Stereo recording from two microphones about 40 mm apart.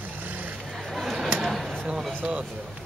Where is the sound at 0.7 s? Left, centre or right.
Centre.